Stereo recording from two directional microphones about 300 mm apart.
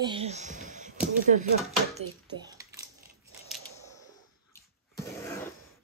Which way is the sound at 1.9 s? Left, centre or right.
Centre.